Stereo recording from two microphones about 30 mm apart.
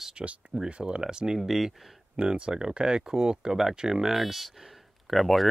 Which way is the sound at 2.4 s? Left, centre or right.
Right.